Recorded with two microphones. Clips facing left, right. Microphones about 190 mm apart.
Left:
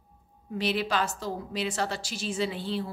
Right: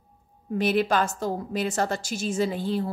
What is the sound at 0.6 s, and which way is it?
A woman's voice, 50° right (ahead or behind).